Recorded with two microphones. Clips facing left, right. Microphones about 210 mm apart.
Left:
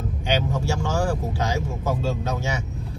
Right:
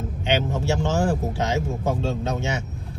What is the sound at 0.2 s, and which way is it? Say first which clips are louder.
Speech: right 1 dB; 25° right (ahead or behind).